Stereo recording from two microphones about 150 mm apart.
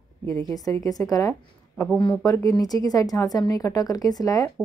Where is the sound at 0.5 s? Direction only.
25° left (ahead or behind).